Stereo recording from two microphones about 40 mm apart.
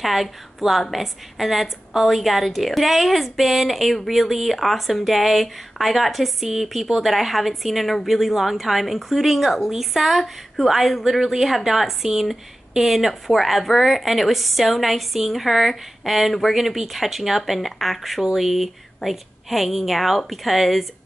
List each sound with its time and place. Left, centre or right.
0.0 s a woman's voice: centre